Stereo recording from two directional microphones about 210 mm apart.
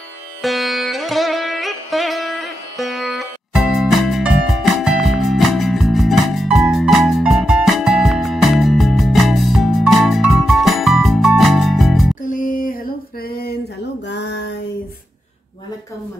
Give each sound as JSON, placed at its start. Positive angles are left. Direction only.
{"t": 0.4, "sound": "music", "side_deg": 0}
{"t": 12.2, "sound": "music", "side_deg": 40}
{"t": 13.3, "sound": "a sound", "side_deg": 45}
{"t": 14.0, "sound": "music", "side_deg": 55}